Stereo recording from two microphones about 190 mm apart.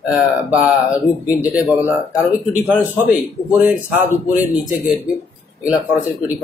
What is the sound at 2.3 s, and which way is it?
Speech, 10° right (ahead or behind).